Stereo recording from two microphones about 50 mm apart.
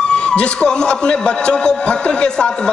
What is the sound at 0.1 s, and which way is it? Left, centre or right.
A man's voice, centre.